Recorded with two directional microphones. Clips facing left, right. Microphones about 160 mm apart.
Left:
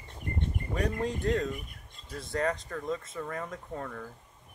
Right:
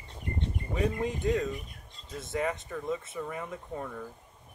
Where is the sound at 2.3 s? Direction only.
5° right (ahead or behind).